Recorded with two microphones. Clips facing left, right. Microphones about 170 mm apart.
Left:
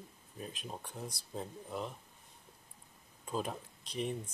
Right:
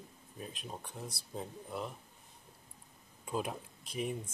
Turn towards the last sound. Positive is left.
turn(degrees=-5)  # may be behind; listen again after turning